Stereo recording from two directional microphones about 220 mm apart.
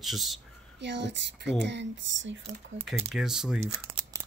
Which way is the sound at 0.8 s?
50° right (ahead or behind).